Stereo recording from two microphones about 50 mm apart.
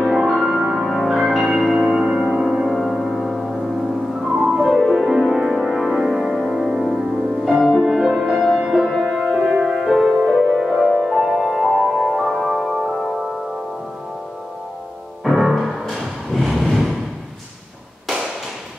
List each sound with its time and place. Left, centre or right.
0.2 s music: centre
4.5 s music: centre
10.1 s music: centre
10.8 s music: centre
15.2 s music: centre
16.3 s a sound: centre